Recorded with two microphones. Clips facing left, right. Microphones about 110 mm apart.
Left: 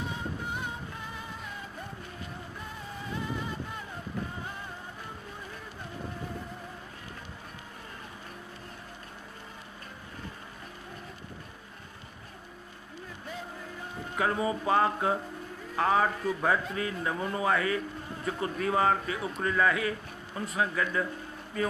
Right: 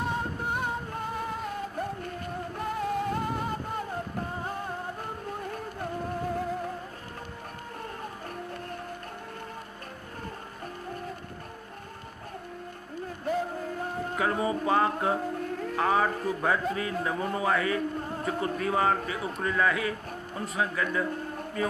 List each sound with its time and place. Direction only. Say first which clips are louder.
0.0 s music: right 5 dB; 55° right (ahead or behind)
13.2 s boat: right 12 dB; 55° right (ahead or behind)
14.1 s a man's voice: even; centre (ahead or behind)